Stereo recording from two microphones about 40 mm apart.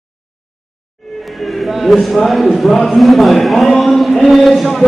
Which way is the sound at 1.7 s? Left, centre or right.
Centre.